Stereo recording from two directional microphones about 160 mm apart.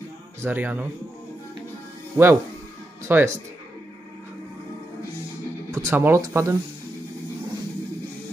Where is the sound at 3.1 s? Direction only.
15° right (ahead or behind).